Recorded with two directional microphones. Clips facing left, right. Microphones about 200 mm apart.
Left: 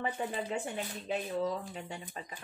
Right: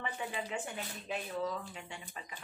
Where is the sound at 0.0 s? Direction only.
40° left (ahead or behind).